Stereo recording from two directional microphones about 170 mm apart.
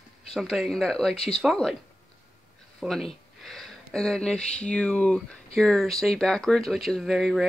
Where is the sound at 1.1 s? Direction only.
35° left (ahead or behind).